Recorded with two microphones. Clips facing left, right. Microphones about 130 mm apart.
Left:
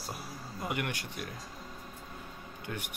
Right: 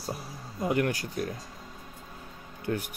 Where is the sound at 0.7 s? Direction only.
40° right (ahead or behind).